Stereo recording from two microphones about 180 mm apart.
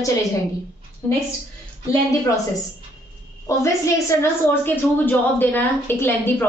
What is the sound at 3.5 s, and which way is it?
A woman's voice, 15° left (ahead or behind).